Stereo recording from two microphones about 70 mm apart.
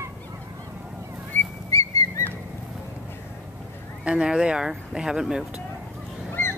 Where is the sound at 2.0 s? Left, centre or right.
Left.